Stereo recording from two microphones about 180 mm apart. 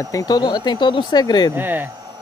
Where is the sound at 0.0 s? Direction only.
20° left (ahead or behind).